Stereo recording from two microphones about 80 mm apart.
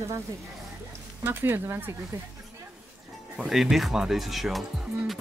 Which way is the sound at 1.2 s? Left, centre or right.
Right.